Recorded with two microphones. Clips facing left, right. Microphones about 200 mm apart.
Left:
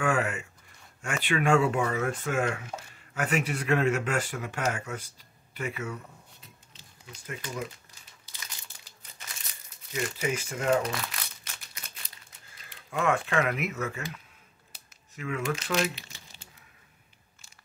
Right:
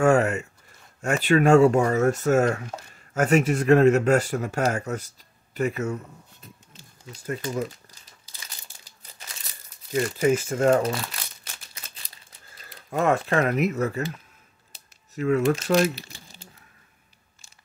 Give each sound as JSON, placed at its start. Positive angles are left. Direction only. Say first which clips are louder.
{"t": 0.0, "sound": "speech", "louder": "right 8 dB", "side_deg": -40}
{"t": 6.4, "sound": "a sound", "louder": "right 6 dB", "side_deg": -50}
{"t": 7.1, "sound": "speech", "louder": "right 9 dB", "side_deg": -35}
{"t": 9.9, "sound": "speech", "louder": "right 9 dB", "side_deg": -40}
{"t": 10.8, "sound": "speech", "louder": "right 6 dB", "side_deg": -30}
{"t": 12.6, "sound": "speech", "louder": "right 5 dB", "side_deg": -40}